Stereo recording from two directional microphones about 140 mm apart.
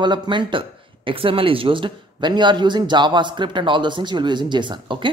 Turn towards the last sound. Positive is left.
turn(degrees=-35)  # may be behind; listen again after turning